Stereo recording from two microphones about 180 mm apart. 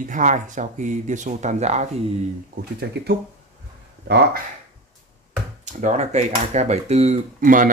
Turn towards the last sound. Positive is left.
turn(degrees=-50)  # may be behind; listen again after turning